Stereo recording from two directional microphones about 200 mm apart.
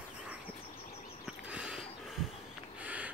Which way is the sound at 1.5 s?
5° right (ahead or behind).